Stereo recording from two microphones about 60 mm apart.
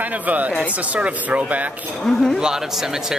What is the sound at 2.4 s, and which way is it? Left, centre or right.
Speech, centre.